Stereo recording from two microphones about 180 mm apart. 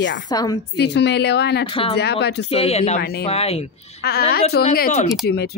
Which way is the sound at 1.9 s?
65° left (ahead or behind).